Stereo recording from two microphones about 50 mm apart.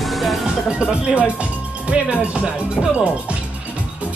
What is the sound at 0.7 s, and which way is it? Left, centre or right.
Speech, centre.